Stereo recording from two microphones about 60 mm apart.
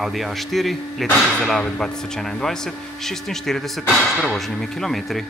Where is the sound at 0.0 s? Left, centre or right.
Centre.